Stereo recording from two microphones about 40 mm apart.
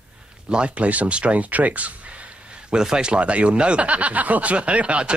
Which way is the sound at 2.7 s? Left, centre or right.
Centre.